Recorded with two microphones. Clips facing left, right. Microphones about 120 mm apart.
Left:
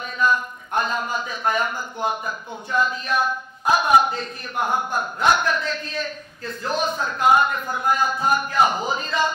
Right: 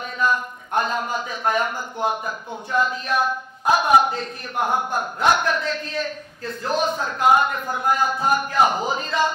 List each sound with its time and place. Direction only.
0.0 s a man's voice: 55° right (ahead or behind)